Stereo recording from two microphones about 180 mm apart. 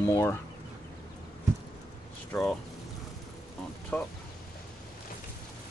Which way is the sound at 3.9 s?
10° left (ahead or behind).